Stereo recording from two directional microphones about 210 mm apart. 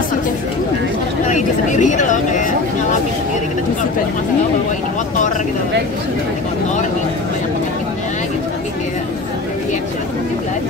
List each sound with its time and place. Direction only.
1.2 s speech: 35° left (ahead or behind)